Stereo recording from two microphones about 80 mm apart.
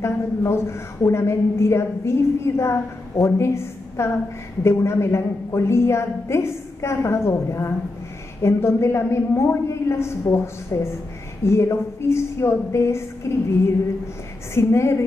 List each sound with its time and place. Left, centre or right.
0.0 s a woman's voice: left
14.5 s a woman's voice: left